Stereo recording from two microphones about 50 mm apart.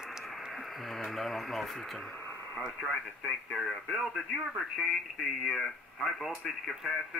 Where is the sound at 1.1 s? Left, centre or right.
Centre.